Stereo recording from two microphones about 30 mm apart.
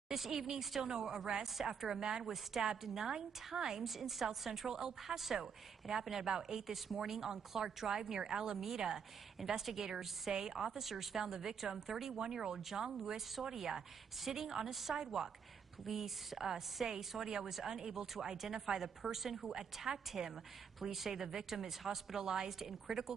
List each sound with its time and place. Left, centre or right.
0.8 s a woman's voice: centre
2.2 s a woman's voice: centre
3.8 s a woman's voice: centre; by 9.0 s right
9.4 s a woman's voice: centre
19.5 s a woman's voice: centre
20.8 s a woman's voice: centre